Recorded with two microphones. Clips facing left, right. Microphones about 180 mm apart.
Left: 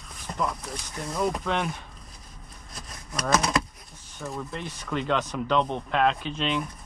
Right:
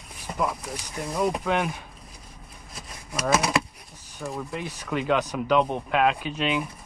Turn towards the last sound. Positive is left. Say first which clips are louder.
# right 2 dB
turn(degrees=-10)  # may be behind; listen again after turning